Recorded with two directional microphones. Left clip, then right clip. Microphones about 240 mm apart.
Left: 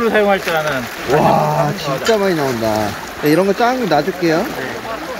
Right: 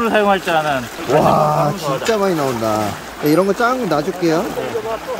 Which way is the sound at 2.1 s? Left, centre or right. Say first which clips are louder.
Left 1 dB; centre.